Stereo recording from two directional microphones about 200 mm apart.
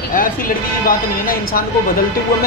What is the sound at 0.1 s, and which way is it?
A woman's voice, 45° left (ahead or behind).